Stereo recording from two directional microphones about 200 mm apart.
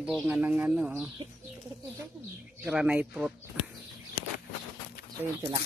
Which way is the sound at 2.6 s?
5° right (ahead or behind).